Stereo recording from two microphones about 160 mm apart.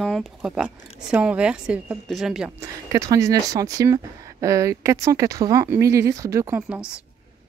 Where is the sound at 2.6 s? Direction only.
20° right (ahead or behind).